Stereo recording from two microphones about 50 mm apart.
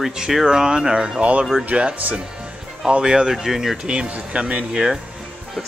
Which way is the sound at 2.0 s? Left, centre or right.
Right.